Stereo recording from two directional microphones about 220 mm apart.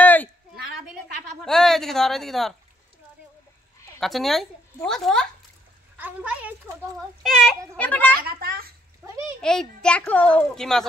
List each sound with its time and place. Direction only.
0.0 s a sound: 10° left (ahead or behind)
1.4 s speech: centre (ahead or behind)
4.0 s a child's voice: centre (ahead or behind)
8.3 s a child's voice: 45° right (ahead or behind)
9.0 s a sound: 10° right (ahead or behind)
9.4 s a child's voice: 5° left (ahead or behind)